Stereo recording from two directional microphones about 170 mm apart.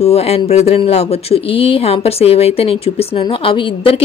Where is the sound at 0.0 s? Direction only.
40° left (ahead or behind).